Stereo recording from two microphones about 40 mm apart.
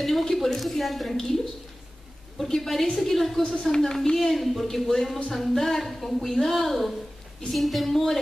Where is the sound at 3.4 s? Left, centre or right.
Centre.